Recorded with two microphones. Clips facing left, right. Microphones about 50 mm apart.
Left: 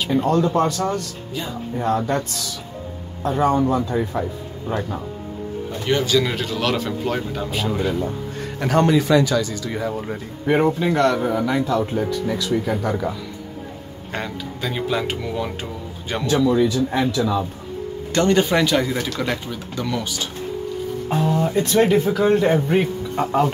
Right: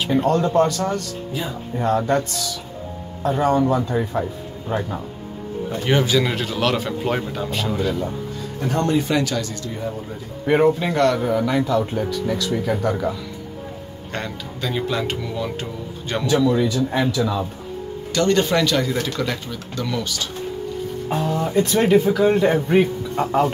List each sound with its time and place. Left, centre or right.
0.0 s speech: centre
0.3 s speech: centre
0.6 s speech: centre
1.3 s speech: centre
5.9 s speech: centre
8.5 s a man's voice: left
10.4 s speech: centre
14.1 s speech: centre
18.1 s speech: left
21.1 s speech: centre